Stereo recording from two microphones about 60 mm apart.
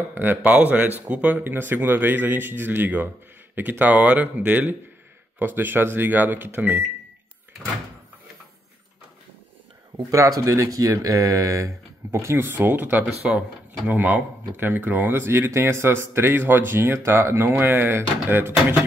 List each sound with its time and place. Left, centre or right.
0.1 s a man's voice: right
5.4 s a man's voice: right
10.1 s speech: right
11.0 s speech: right
13.2 s speech: centre
13.8 s a man's voice: right